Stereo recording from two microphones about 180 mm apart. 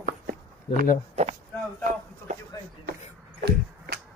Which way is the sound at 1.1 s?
35° right (ahead or behind).